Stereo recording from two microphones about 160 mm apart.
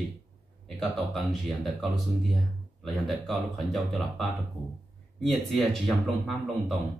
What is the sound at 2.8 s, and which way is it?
Speech, centre (ahead or behind).